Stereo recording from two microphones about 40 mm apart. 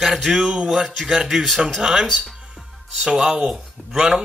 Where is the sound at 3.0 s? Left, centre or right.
Centre.